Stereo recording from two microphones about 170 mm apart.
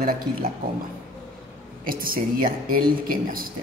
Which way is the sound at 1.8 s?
60° right (ahead or behind).